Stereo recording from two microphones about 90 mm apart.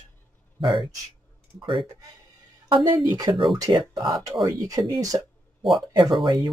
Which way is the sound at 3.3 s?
70° right (ahead or behind).